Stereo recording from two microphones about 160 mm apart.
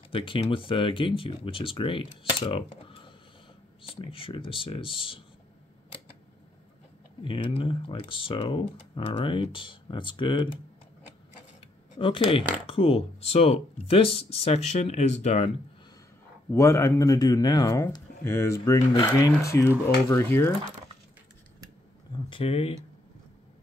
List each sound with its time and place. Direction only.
0.1 s speech: 35° left (ahead or behind)
7.2 s speech: 35° left (ahead or behind)
12.0 s speech: 35° left (ahead or behind)
16.4 s speech: 20° left (ahead or behind)
22.1 s speech: 35° left (ahead or behind)